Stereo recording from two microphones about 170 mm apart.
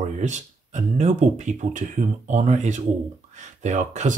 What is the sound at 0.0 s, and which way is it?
Speech, 45° right (ahead or behind).